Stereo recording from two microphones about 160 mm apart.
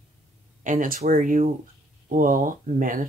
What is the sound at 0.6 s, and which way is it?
Speech, 55° right (ahead or behind).